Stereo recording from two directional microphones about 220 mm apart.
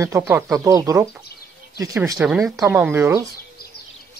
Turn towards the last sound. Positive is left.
turn(degrees=-10)  # may be behind; listen again after turning